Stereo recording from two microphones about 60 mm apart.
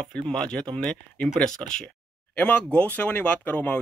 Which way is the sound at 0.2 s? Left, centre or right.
Centre.